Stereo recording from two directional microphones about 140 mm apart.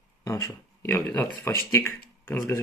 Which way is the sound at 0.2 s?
20° left (ahead or behind).